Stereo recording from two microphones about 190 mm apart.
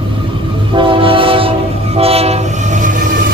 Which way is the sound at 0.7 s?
25° right (ahead or behind).